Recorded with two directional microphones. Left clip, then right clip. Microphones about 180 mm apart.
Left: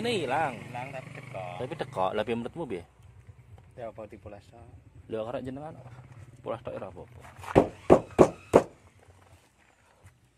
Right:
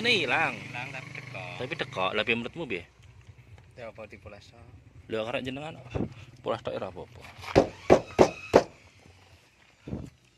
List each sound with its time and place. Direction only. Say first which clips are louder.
0.0 s speech: right 3 dB; 10° left (ahead or behind)
0.7 s vehicle: right 1 dB; 40° left (ahead or behind)
1.6 s speech: even; 5° left (ahead or behind)
3.7 s speech: left 2 dB; 50° left (ahead or behind)
5.0 s a man's voice: right 3 dB; 5° right (ahead or behind)
6.4 s speech: right 4 dB; 20° right (ahead or behind)
7.4 s a sound: even; 45° left (ahead or behind)